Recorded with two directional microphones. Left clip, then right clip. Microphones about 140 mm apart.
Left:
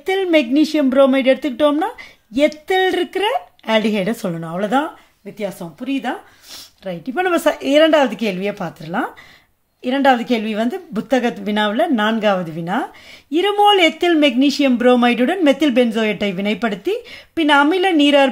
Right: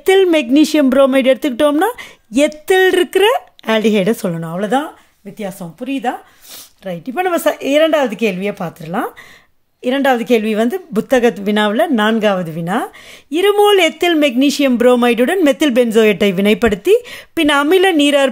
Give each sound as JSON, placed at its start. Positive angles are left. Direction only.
{"t": 0.0, "sound": "speech", "side_deg": -65}
{"t": 9.8, "sound": "a woman's voice", "side_deg": -50}